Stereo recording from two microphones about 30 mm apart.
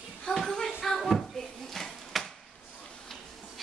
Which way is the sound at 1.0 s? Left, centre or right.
Centre.